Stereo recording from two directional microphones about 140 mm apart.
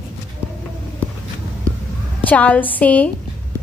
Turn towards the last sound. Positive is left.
turn(degrees=10)  # may be behind; listen again after turning